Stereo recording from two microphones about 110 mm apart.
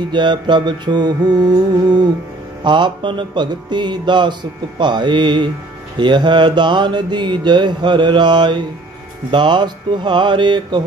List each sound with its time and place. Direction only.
0.1 s music: 45° right (ahead or behind)
2.6 s mantra: 45° right (ahead or behind)